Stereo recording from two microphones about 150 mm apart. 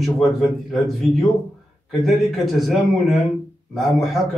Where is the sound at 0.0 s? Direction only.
Centre (ahead or behind).